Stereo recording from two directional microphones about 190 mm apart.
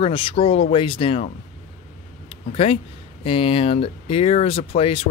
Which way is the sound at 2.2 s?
30° left (ahead or behind).